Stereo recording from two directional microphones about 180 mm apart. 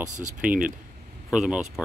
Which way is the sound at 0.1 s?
45° right (ahead or behind).